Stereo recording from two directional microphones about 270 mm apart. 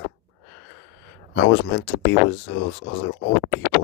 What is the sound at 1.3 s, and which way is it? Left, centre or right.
Speech, left.